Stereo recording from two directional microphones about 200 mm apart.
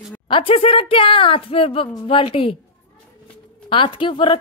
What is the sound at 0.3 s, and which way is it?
Speech, 25° left (ahead or behind).